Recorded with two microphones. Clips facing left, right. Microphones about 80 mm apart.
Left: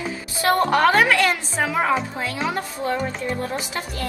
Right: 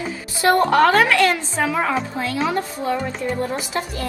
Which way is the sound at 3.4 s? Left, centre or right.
Right.